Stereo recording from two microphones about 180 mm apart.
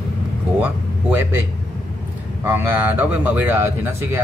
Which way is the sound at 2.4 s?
10° right (ahead or behind).